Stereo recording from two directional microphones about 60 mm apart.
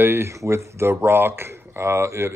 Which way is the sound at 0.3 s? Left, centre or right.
Right.